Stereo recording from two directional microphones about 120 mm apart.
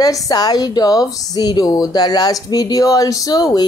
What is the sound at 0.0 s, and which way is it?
A woman's voice, 30° left (ahead or behind).